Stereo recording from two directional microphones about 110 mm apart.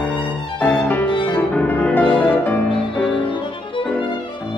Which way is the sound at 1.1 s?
45° left (ahead or behind).